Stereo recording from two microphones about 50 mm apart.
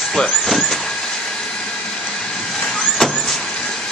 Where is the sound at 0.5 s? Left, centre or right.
Centre.